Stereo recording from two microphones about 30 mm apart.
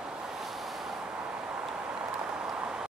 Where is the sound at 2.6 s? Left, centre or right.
Right.